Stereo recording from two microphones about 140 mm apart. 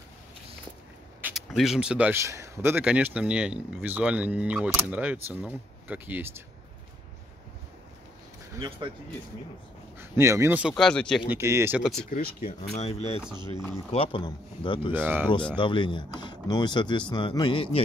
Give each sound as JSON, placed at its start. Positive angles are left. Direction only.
{"t": 1.3, "sound": "speech", "side_deg": -5}
{"t": 8.5, "sound": "speech", "side_deg": -35}
{"t": 9.9, "sound": "speech", "side_deg": -20}
{"t": 10.6, "sound": "speech", "side_deg": 0}
{"t": 11.2, "sound": "speech", "side_deg": -20}
{"t": 11.8, "sound": "speech", "side_deg": 0}
{"t": 12.1, "sound": "speech", "side_deg": 90}
{"t": 12.7, "sound": "speech", "side_deg": 50}
{"t": 14.9, "sound": "speech", "side_deg": -15}
{"t": 15.5, "sound": "speech", "side_deg": 35}